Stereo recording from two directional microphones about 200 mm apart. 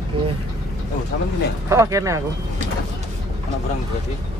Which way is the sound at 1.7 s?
15° right (ahead or behind).